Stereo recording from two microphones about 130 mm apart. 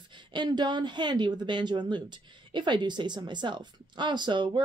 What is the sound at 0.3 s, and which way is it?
Speech, 35° right (ahead or behind).